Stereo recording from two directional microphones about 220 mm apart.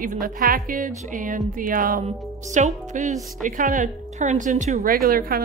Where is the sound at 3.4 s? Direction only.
35° right (ahead or behind).